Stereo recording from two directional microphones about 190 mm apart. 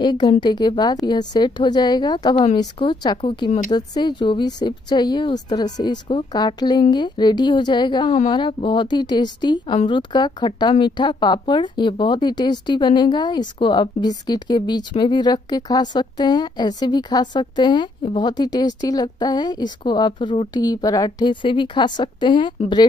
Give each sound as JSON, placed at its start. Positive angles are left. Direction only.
{"t": 0.0, "sound": "a woman's voice", "side_deg": 25}